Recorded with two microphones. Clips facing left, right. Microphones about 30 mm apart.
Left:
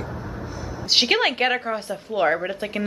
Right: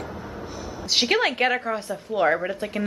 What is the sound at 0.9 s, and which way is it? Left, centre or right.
A woman's voice, left.